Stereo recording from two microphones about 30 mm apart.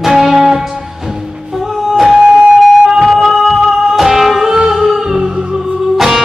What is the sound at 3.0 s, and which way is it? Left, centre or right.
Music, centre.